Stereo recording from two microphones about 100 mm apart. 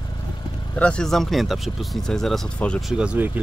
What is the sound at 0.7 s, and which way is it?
Speech, 10° left (ahead or behind).